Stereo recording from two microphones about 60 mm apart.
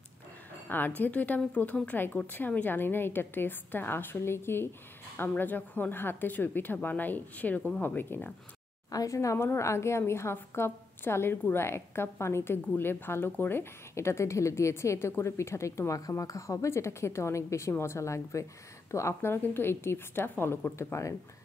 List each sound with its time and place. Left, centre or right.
0.7 s a woman's voice: left
5.3 s a woman's voice: left
8.9 s a woman's voice: left
9.4 s a woman's voice: left
19.3 s a woman's voice: left
20.9 s a woman's voice: left